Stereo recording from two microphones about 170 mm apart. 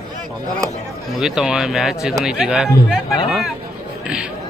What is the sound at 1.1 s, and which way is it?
Speech, 5° right (ahead or behind).